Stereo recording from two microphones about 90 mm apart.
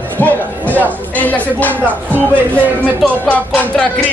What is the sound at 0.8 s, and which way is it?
Speech, 15° left (ahead or behind).